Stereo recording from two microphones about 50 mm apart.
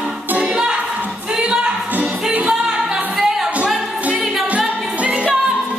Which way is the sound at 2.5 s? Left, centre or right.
Centre.